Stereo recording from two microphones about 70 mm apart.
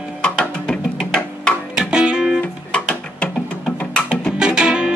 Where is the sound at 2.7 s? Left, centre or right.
Centre.